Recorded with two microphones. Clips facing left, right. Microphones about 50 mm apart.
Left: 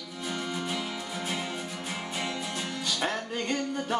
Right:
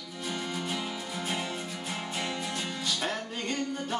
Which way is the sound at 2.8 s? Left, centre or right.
Centre.